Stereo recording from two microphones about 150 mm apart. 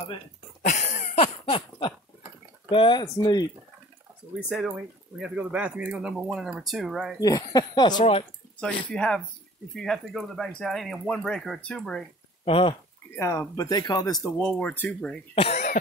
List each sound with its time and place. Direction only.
0.6 s a sound: 50° left (ahead or behind); by 2.0 s 35° left (ahead or behind)
2.7 s speech: 35° left (ahead or behind)
4.5 s speech: 5° right (ahead or behind)
7.2 s speech: 25° left (ahead or behind)
8.0 s speech: 40° left (ahead or behind)
8.5 s speech: 5° left (ahead or behind)
12.4 s speech: 35° left (ahead or behind)
13.1 s speech: 15° left (ahead or behind)
14.4 s speech: 10° left (ahead or behind)
15.3 s speech: 45° left (ahead or behind)